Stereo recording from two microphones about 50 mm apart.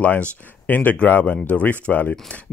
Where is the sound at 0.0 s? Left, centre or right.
Left.